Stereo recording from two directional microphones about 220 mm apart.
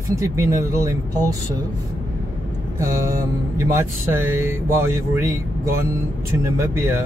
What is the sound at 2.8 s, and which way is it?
Speech, 15° right (ahead or behind).